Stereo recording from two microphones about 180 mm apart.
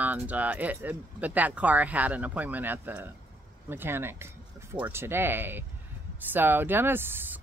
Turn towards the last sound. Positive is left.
turn(degrees=-10)  # may be behind; listen again after turning